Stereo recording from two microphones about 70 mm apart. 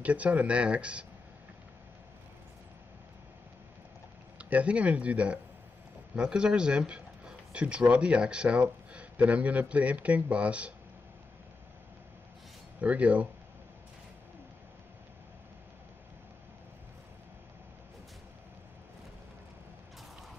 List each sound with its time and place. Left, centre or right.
0.0 s speech: centre
4.4 s speech: centre
12.8 s speech: right